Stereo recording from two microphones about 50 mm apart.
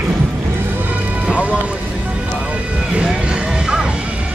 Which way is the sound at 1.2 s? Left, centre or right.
Right.